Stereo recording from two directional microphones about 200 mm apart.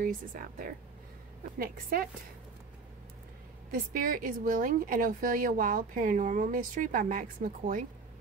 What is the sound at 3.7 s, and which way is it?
Speech, 45° right (ahead or behind).